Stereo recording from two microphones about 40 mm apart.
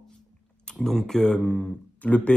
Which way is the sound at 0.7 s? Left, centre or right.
Centre.